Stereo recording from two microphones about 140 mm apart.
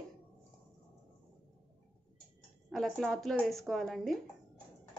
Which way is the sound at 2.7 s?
Centre (ahead or behind).